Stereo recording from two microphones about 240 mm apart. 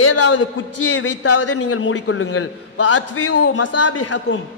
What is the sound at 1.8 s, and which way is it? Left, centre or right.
A man's voice, left.